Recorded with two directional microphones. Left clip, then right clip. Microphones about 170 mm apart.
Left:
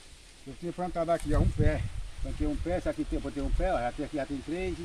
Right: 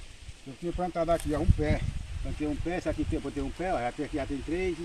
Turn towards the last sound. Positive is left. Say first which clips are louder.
# right 1 dB
turn(degrees=5)  # may be behind; listen again after turning